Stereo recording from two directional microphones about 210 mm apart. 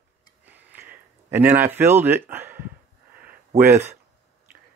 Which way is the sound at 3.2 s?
10° right (ahead or behind).